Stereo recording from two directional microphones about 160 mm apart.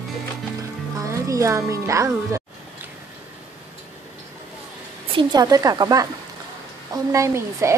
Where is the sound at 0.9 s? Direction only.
20° right (ahead or behind).